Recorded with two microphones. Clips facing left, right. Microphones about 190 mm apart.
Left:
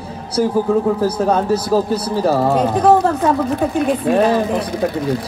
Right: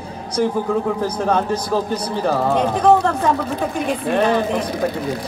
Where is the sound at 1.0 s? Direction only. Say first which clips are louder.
Left 3 dB; 10° left (ahead or behind).